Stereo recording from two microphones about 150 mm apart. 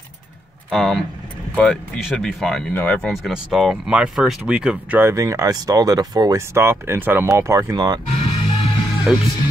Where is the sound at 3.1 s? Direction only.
Centre (ahead or behind); by 8.0 s 25° right (ahead or behind).